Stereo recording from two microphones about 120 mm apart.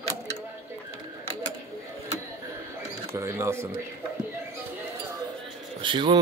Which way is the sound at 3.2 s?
20° right (ahead or behind).